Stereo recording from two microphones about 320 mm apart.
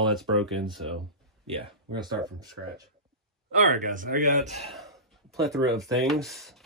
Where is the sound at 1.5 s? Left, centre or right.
Centre.